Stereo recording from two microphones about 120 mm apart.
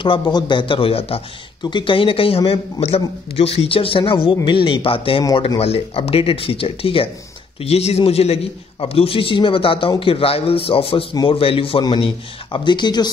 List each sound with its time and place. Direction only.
0.0 s a man's voice: 40° left (ahead or behind)
1.6 s a man's voice: 40° left (ahead or behind)